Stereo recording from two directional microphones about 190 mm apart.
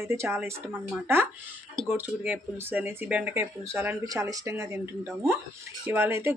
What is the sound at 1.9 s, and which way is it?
Speech, 10° right (ahead or behind).